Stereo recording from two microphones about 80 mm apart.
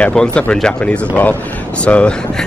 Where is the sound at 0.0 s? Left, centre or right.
Centre.